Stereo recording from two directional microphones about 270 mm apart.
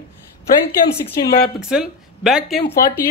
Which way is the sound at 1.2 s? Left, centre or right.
Left.